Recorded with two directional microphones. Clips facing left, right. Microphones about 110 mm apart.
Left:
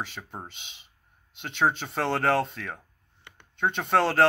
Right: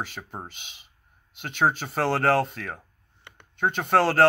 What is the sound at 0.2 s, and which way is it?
Speech, 10° right (ahead or behind).